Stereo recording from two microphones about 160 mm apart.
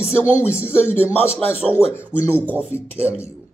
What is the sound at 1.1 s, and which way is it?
Speech, 10° left (ahead or behind).